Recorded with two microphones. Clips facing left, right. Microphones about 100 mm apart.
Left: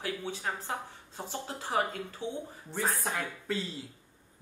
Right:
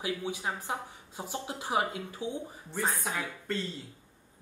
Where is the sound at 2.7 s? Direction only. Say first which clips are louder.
Even; centre (ahead or behind).